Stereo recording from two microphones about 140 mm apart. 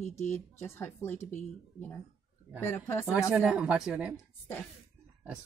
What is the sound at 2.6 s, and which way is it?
Speech, 15° left (ahead or behind).